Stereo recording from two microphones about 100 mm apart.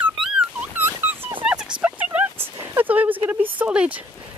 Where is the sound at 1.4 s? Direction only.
10° right (ahead or behind).